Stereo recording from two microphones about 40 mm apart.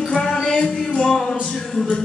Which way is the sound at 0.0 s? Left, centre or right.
Centre.